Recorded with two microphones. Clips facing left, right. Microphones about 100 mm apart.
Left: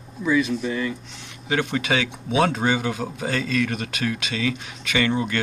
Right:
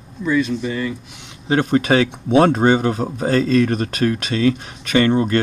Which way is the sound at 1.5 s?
40° right (ahead or behind).